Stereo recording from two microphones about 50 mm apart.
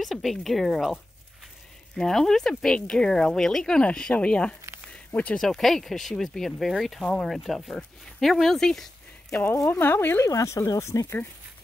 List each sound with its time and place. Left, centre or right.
0.0 s speech: centre
2.0 s speech: centre; by 5.4 s left
5.4 s speech: centre
9.7 s speech: left
10.3 s speech: left